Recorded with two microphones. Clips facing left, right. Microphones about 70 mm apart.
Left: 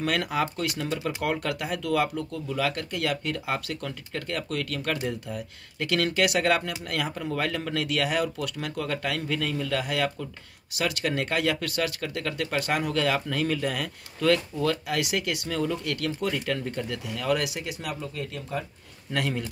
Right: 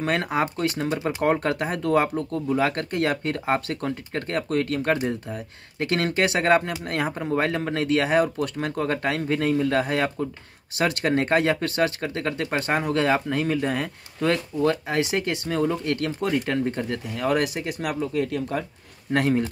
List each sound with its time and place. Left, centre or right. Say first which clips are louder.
0.0 s speech: right 3 dB; right
19.1 s speech: right 7 dB; right